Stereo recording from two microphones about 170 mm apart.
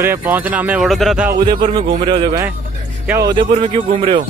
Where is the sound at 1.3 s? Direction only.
25° right (ahead or behind).